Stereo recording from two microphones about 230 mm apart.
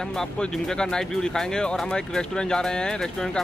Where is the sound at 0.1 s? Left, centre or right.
Centre.